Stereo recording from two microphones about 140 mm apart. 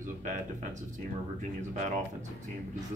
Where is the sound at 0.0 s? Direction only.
65° right (ahead or behind).